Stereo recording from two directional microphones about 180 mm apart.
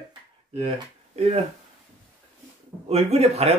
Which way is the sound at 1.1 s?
35° right (ahead or behind).